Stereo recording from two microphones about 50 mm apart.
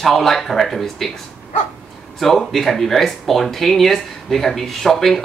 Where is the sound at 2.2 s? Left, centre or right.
Centre.